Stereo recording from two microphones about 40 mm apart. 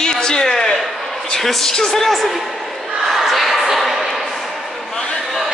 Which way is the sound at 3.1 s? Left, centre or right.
Centre.